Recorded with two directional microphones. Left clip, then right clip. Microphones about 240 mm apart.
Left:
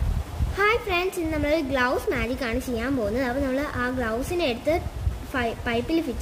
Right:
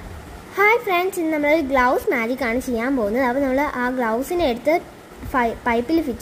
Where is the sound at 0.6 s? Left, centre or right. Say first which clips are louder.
Right 6 dB; centre.